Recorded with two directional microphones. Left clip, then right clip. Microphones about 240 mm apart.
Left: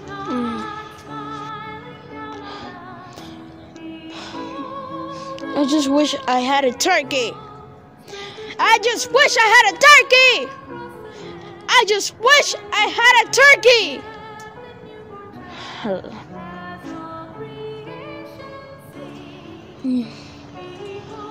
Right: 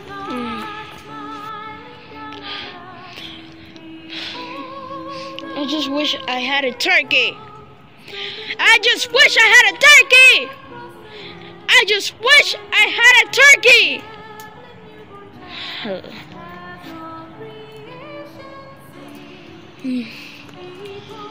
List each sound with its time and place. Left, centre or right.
0.3 s music: centre
1.1 s music: centre
2.3 s music: centre
4.2 s music: centre
5.4 s a woman's voice: left; by 10.5 s centre
11.6 s a woman's voice: centre
15.8 s speech: centre